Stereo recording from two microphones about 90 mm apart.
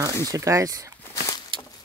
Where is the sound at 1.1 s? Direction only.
40° left (ahead or behind).